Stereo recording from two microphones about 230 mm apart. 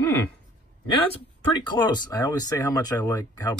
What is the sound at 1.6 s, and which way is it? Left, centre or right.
Speech, centre.